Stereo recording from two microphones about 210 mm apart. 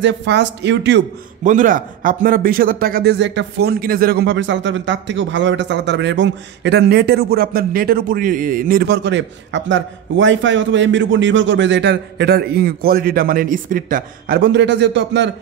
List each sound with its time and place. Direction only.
0.0 s speech: 55° right (ahead or behind)
1.4 s speech: 40° right (ahead or behind); by 15.3 s 55° right (ahead or behind)